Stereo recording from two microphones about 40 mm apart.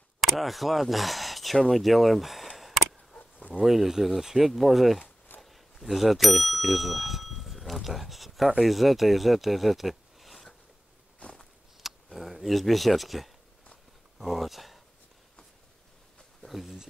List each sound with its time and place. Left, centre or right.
0.2 s speech: centre
2.5 s a sound: centre
3.2 s a sound: left
3.6 s speech: centre
5.4 s bicycle bell: centre
6.7 s speech: centre
11.8 s a sound: centre
14.1 s speech: centre
16.4 s speech: centre